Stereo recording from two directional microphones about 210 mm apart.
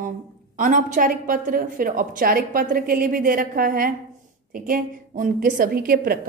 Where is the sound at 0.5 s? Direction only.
40° right (ahead or behind).